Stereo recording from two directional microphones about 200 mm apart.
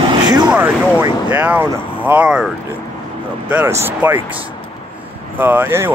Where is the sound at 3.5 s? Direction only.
10° right (ahead or behind).